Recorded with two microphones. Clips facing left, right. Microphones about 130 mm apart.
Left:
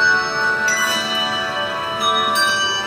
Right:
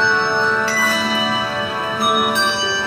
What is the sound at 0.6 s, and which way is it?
Music, 45° right (ahead or behind).